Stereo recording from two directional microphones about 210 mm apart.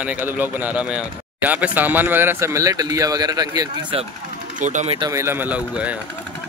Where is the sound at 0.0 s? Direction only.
10° right (ahead or behind).